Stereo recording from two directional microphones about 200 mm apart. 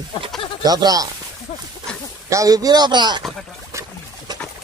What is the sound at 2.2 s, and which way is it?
Speech, 15° right (ahead or behind).